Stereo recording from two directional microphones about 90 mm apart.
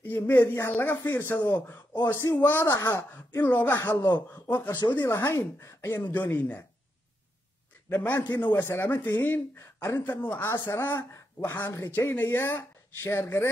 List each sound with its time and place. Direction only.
0.0 s speech: 25° left (ahead or behind)
1.4 s a man's voice: 50° left (ahead or behind)
2.3 s speech: 25° left (ahead or behind)
2.7 s a man's voice: 40° left (ahead or behind)
3.4 s speech: 20° left (ahead or behind)
5.1 s speech: 30° left (ahead or behind)
7.9 s speech: 25° left (ahead or behind)
8.4 s speech: 55° left (ahead or behind)
8.6 s speech: 25° left (ahead or behind)
11.6 s speech: 40° left (ahead or behind)
11.9 s speech: 25° left (ahead or behind)